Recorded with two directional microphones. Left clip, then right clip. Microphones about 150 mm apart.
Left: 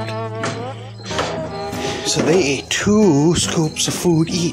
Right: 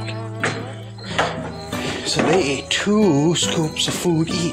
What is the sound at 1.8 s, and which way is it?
Speech, 30° left (ahead or behind).